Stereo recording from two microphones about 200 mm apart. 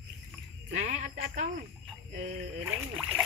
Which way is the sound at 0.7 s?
40° right (ahead or behind).